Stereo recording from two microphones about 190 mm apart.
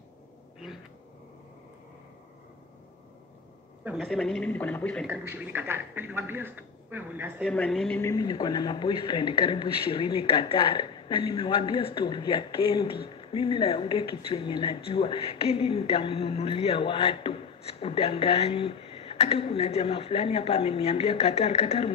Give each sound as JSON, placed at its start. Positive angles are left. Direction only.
{"t": 3.8, "sound": "a woman's voice", "side_deg": 0}
{"t": 5.0, "sound": "a man's voice", "side_deg": -10}
{"t": 7.5, "sound": "a woman's voice", "side_deg": 5}
{"t": 8.0, "sound": "speech", "side_deg": 20}